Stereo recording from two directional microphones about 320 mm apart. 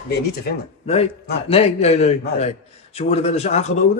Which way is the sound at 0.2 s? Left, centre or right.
Left.